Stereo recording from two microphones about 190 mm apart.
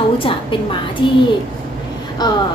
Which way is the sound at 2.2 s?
20° left (ahead or behind).